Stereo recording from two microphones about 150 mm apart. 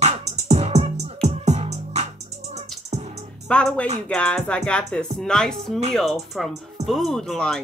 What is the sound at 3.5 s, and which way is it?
Music, 5° left (ahead or behind).